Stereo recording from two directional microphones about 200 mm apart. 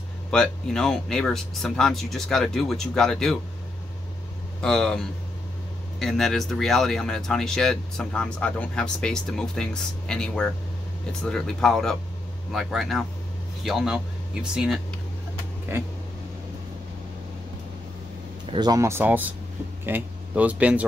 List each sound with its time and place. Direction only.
0.3 s speech: 5° left (ahead or behind)
4.6 s speech: 5° left (ahead or behind)
18.5 s speech: 20° right (ahead or behind)